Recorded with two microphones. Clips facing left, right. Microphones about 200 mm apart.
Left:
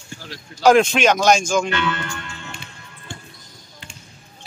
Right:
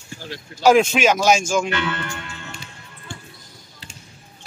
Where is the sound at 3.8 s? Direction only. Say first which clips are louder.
Left 1 dB; 35° right (ahead or behind).